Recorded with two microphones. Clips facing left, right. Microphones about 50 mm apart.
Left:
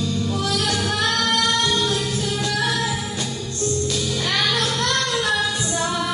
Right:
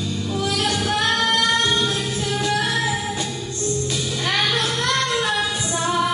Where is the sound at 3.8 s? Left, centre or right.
Right.